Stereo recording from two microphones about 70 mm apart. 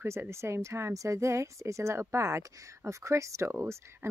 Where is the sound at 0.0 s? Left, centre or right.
Right.